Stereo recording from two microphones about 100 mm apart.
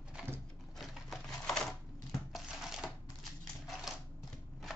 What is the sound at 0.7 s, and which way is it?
Typewriter, centre (ahead or behind).